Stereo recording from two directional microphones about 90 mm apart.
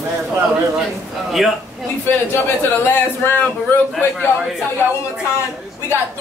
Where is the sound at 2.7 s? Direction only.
25° left (ahead or behind).